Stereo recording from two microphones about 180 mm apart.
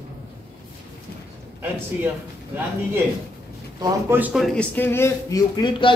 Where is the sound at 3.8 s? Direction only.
10° right (ahead or behind).